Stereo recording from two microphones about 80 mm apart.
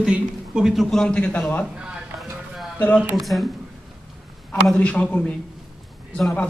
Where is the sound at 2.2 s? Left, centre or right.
Centre.